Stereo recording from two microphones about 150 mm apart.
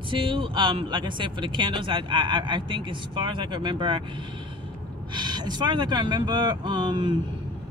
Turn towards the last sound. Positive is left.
turn(degrees=-30)  # may be behind; listen again after turning